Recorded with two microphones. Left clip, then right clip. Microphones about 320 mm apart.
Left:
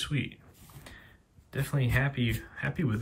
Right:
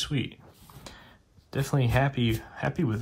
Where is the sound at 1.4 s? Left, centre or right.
Centre.